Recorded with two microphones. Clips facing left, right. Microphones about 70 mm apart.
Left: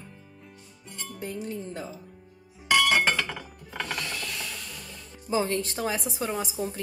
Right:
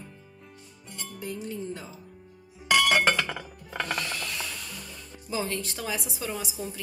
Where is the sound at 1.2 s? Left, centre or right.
Left.